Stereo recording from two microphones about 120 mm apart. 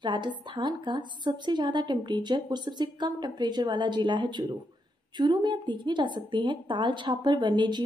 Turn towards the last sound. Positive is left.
turn(degrees=-40)  # may be behind; listen again after turning